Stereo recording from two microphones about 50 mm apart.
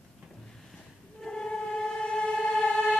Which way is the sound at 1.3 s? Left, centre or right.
Centre.